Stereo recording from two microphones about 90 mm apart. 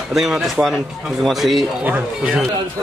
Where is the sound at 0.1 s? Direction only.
5° right (ahead or behind).